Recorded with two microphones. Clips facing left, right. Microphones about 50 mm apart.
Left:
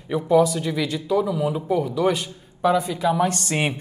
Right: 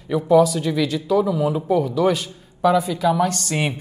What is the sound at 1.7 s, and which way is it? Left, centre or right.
A man's voice, centre.